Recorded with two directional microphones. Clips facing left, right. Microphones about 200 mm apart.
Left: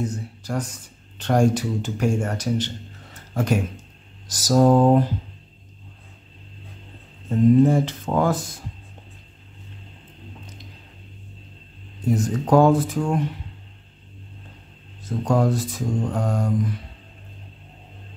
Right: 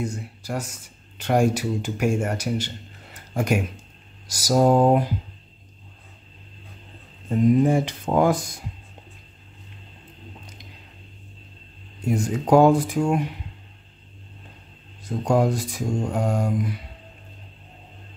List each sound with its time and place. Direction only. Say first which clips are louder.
0.0 s speech: left 1 dB; 10° right (ahead or behind)
7.2 s speech: left 2 dB; 10° right (ahead or behind)
12.0 s speech: left 1 dB; 10° right (ahead or behind)
15.0 s speech: even; 10° right (ahead or behind)